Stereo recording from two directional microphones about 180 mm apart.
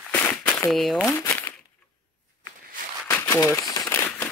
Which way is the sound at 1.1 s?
15° left (ahead or behind).